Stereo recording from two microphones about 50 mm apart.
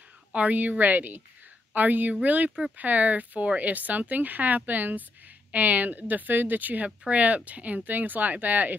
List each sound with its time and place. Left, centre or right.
0.3 s speech: right